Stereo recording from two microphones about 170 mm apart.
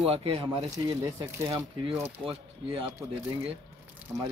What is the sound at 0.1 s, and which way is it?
Speech, 35° right (ahead or behind).